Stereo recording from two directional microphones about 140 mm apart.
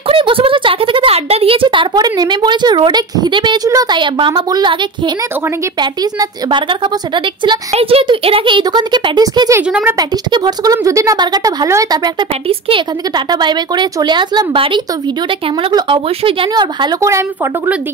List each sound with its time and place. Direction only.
0.1 s speech: 40° right (ahead or behind)
9.6 s speech: 10° right (ahead or behind)
9.9 s speech: 30° right (ahead or behind)
12.4 s speech: 40° right (ahead or behind)